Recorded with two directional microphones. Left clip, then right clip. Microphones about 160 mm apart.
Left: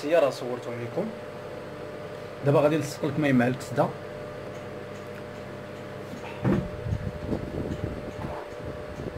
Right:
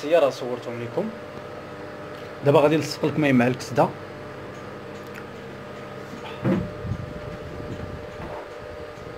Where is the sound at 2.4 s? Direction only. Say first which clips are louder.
Right 5 dB; 45° right (ahead or behind).